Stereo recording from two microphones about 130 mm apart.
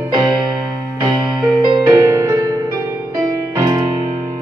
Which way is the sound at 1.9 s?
25° right (ahead or behind).